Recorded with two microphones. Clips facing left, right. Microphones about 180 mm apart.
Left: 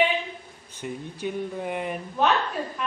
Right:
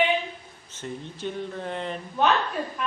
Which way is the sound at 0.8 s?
10° left (ahead or behind).